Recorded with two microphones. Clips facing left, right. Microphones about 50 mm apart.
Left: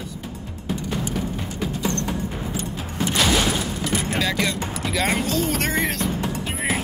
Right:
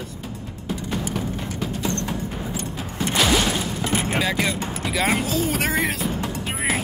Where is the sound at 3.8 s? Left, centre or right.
Right.